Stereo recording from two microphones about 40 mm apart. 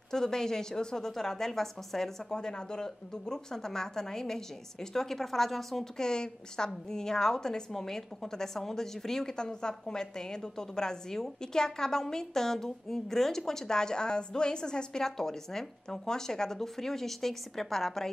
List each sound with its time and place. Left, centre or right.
0.1 s a woman's voice: centre
2.3 s a woman's voice: centre
6.0 s a woman's voice: centre